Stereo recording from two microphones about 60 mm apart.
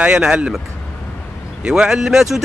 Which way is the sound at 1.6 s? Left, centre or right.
Centre.